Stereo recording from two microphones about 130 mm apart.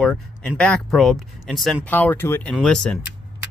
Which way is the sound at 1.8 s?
15° left (ahead or behind).